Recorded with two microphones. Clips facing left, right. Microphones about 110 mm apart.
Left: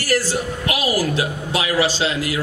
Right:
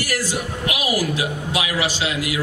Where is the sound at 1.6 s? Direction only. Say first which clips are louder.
Left 5 dB; 30° left (ahead or behind).